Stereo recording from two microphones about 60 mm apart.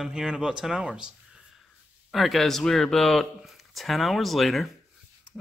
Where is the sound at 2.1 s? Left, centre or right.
Centre.